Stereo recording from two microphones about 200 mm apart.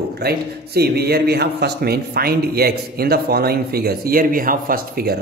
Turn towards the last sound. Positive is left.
turn(degrees=-45)  # may be behind; listen again after turning